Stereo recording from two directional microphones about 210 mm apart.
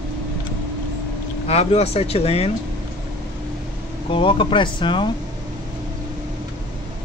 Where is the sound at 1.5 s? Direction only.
30° left (ahead or behind).